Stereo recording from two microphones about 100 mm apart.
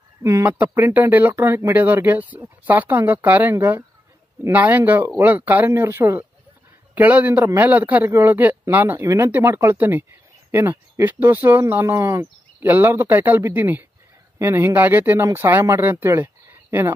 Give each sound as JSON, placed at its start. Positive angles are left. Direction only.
{"t": 0.2, "sound": "speech", "side_deg": -30}
{"t": 0.5, "sound": "speech", "side_deg": -20}